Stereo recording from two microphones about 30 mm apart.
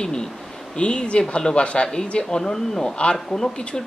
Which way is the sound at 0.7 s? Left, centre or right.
Left.